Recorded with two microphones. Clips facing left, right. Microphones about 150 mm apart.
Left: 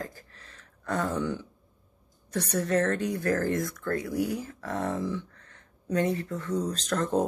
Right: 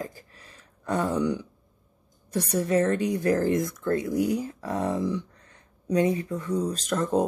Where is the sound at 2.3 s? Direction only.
10° right (ahead or behind).